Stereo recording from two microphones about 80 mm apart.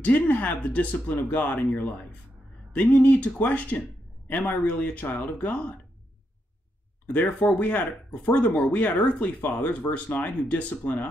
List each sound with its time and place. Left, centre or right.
0.0 s speech: left
7.1 s speech: centre